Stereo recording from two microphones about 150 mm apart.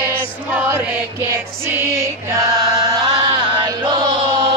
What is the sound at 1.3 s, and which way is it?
Music, 15° right (ahead or behind).